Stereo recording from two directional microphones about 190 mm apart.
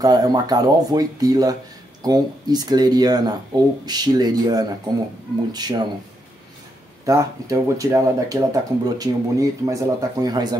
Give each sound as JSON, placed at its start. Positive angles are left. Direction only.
{"t": 0.0, "sound": "speech", "side_deg": -20}
{"t": 7.1, "sound": "speech", "side_deg": -15}